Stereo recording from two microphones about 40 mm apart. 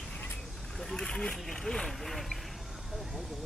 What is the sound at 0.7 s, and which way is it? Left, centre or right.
Vehicle, centre.